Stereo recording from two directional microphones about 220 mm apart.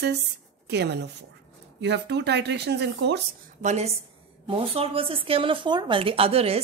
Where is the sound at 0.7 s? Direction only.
50° right (ahead or behind).